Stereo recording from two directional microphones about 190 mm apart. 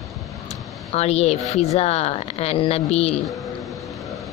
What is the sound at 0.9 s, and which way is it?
Speech, 35° left (ahead or behind).